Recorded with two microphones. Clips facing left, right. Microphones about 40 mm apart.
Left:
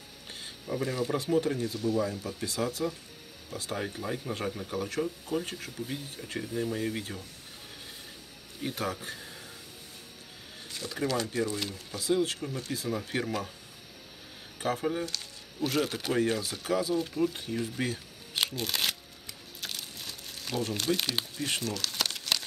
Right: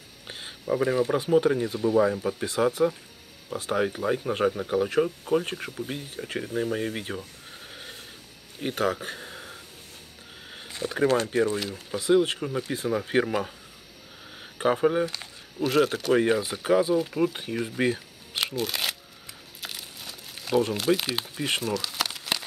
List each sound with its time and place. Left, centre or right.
0.3 s speech: right
5.0 s speech: right
8.5 s speech: right
10.5 s speech: right
14.6 s speech: right
15.6 s speech: centre
16.2 s speech: right
18.3 s crumpling: centre
20.7 s speech: centre
21.4 s speech: right
21.7 s crumpling: centre